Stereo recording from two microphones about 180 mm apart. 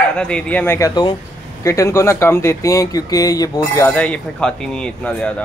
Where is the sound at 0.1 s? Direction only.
5° left (ahead or behind).